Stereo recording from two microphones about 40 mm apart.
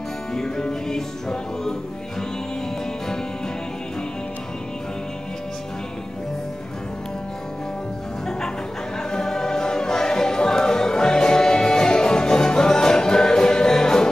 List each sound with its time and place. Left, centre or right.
0.3 s music: centre
9.1 s music: centre